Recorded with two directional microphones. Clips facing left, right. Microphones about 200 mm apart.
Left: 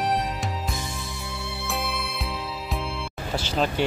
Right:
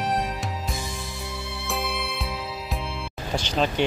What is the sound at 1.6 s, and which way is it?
Music, centre (ahead or behind).